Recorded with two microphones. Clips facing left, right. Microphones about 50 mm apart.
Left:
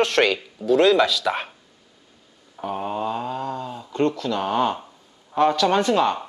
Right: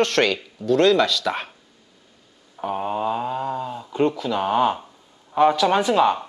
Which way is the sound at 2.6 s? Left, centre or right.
Centre.